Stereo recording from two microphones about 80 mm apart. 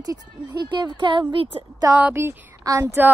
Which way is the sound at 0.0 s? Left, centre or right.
Right.